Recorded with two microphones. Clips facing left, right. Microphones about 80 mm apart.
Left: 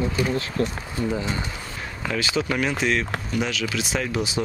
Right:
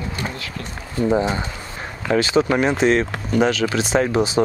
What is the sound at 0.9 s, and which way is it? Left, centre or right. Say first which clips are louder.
Speech: right 8 dB; right.